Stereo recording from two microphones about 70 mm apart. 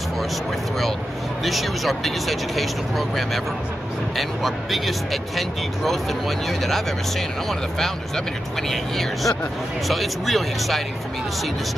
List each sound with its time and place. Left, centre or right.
1.4 s speech: centre